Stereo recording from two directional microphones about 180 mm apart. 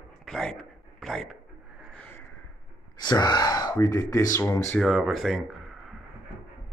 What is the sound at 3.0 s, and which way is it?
Speech, 25° left (ahead or behind).